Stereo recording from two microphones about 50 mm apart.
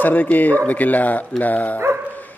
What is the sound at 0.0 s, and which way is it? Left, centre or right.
A man's voice, left.